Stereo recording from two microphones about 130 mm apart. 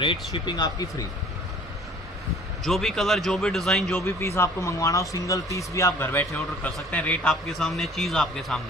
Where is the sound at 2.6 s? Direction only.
Centre (ahead or behind).